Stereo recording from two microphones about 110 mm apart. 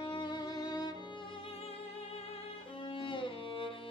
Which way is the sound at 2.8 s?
50° left (ahead or behind).